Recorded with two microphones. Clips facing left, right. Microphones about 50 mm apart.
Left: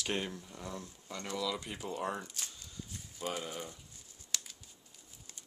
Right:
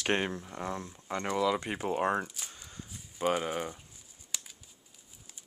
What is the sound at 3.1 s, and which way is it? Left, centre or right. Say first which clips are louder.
Speech: right 9 dB; right.